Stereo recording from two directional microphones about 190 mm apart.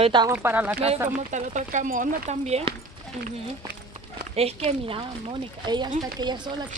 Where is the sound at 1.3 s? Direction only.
40° right (ahead or behind).